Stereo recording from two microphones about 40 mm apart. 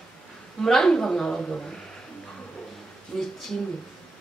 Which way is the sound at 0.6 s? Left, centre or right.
Centre.